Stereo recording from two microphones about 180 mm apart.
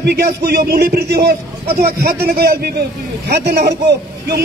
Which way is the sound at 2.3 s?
60° right (ahead or behind).